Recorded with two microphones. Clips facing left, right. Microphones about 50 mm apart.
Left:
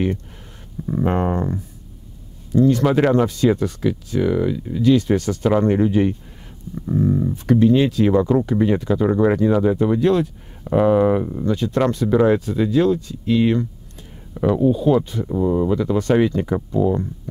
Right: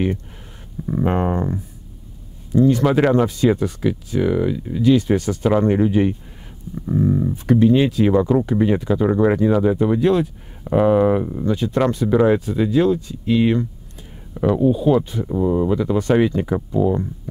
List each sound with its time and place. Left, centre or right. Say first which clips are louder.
0.8 s speech: even; centre
14.3 s speech: even; centre
14.6 s speech: even; centre